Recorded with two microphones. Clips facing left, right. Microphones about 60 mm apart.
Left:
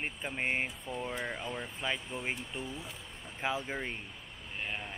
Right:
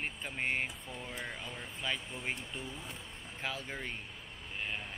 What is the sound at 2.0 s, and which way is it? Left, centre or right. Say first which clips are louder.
Speech: left 2 dB; centre.